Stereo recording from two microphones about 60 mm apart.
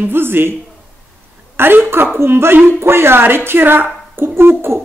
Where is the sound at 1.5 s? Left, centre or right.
Right.